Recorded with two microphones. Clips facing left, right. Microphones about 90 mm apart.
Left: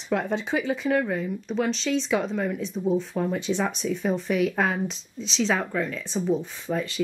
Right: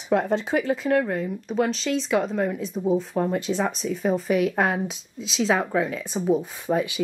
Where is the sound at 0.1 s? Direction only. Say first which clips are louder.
Right 4 dB; centre (ahead or behind).